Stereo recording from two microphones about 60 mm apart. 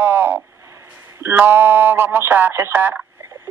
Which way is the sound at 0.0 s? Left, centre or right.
Right.